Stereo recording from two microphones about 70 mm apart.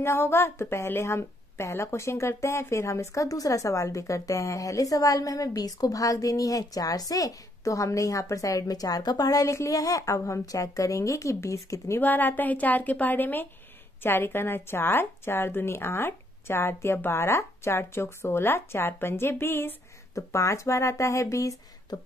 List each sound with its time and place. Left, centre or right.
0.0 s a woman's voice: left
12.0 s a woman's voice: left
20.2 s a woman's voice: left